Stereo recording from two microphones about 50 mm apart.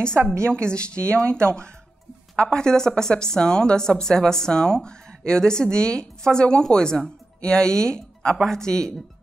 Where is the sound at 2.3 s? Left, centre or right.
Centre.